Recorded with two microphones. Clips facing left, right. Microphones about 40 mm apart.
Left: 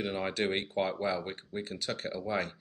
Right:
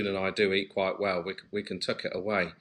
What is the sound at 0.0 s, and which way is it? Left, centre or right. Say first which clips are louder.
Speech: right 5 dB; centre.